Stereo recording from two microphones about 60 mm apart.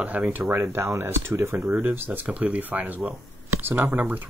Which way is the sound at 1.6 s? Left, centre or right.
Right.